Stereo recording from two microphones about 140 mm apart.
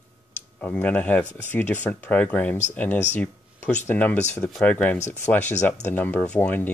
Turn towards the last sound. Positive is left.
turn(degrees=15)  # may be behind; listen again after turning